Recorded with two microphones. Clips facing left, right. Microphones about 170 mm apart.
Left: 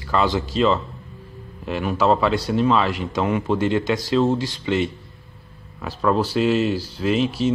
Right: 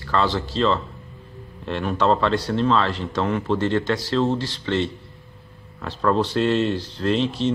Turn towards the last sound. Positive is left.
turn(degrees=5)  # may be behind; listen again after turning